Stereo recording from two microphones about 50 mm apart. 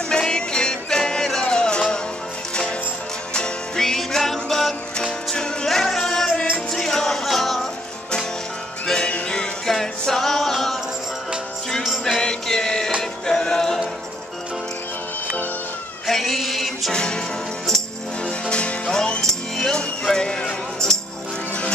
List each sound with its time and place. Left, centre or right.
0.1 s music: centre
3.3 s music: centre
5.3 s music: centre
8.8 s music: centre
12.2 s music: centre
16.1 s a sound: centre
16.9 s music: centre
18.2 s music: left
19.2 s cutlery: centre
19.7 s music: centre